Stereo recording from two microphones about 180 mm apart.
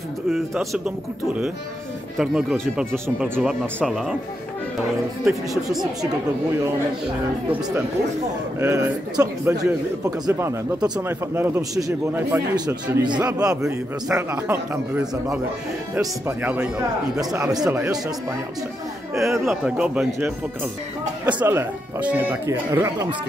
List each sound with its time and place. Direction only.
0.3 s speech: 5° right (ahead or behind)
2.1 s speech: 5° right (ahead or behind)
5.2 s speech: centre (ahead or behind)
8.5 s speech: 15° right (ahead or behind)
12.5 s a man's voice: 20° right (ahead or behind)
19.3 s speech: 15° right (ahead or behind)
19.6 s speech: 5° right (ahead or behind)
21.3 s speech: 10° right (ahead or behind)